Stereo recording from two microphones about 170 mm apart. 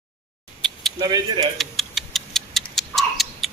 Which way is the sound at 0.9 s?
25° right (ahead or behind).